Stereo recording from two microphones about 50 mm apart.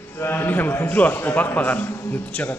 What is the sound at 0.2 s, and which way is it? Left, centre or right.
Speech, left.